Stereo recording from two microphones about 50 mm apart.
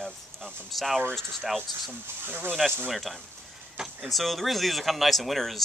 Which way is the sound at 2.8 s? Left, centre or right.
Centre.